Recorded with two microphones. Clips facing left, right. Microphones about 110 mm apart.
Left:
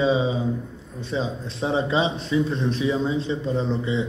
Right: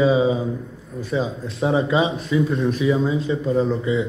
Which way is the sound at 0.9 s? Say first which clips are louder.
Right 3 dB; 25° left (ahead or behind).